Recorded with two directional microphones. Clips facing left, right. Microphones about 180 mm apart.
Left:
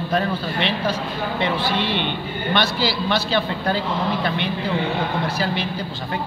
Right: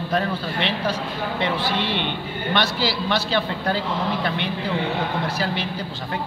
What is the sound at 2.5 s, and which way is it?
A man's voice, 15° left (ahead or behind).